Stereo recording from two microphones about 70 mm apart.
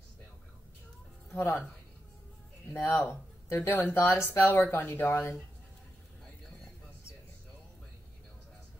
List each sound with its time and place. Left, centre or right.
1.3 s speech: left
2.7 s speech: left